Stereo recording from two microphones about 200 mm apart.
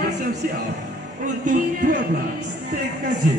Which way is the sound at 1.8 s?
55° right (ahead or behind).